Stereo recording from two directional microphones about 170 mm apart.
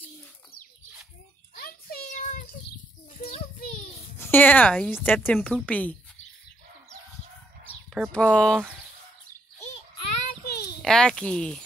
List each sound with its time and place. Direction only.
1.5 s a sound: 60° left (ahead or behind)
2.0 s child singing: 50° left (ahead or behind)
4.2 s speech: 10° left (ahead or behind)
8.1 s speech: 5° left (ahead or behind)
10.2 s a sound: 65° left (ahead or behind)
10.8 s speech: 5° left (ahead or behind)